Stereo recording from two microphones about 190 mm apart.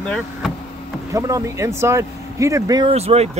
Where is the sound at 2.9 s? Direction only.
35° right (ahead or behind).